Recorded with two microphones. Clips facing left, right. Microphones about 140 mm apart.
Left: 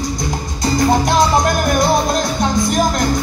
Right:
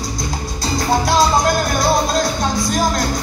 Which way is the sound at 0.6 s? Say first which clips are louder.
Left 4 dB; 20° left (ahead or behind).